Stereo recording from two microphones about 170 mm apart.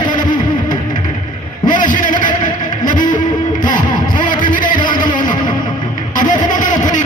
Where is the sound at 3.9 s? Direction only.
50° left (ahead or behind).